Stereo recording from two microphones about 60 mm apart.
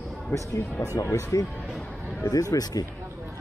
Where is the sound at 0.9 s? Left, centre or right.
Left.